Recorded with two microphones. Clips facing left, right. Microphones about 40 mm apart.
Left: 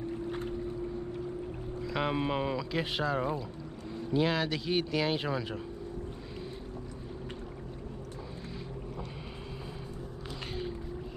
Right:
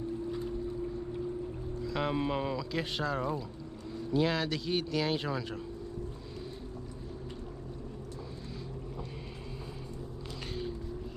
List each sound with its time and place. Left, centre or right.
0.3 s boat: left
1.8 s speech: centre